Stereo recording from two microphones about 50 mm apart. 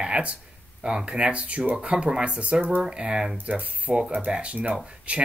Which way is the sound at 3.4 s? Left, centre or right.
Right.